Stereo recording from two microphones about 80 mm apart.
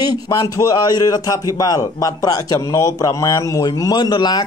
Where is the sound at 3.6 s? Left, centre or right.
Left.